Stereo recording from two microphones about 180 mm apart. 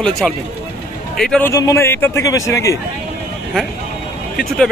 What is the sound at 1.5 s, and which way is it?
A man's voice, 15° left (ahead or behind).